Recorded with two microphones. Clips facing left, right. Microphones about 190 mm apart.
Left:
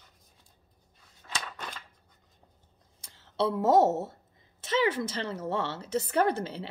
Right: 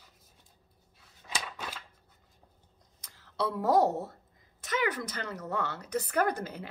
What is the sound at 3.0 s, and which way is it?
Speech, 25° left (ahead or behind).